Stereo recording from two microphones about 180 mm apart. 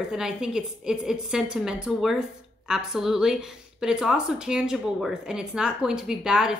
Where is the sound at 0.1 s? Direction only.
5° right (ahead or behind).